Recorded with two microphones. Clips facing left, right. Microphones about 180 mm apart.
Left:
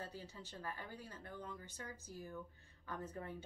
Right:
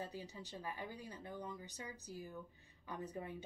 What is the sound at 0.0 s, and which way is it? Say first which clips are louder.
Speech: right 3 dB; 15° right (ahead or behind).